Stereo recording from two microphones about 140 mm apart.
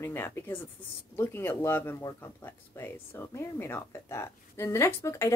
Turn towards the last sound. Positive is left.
turn(degrees=20)  # may be behind; listen again after turning